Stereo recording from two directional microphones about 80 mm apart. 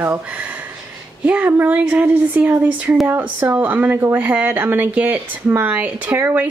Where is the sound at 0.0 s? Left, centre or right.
Right.